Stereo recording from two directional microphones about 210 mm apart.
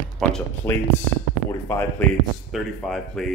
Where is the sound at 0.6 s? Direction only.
10° left (ahead or behind).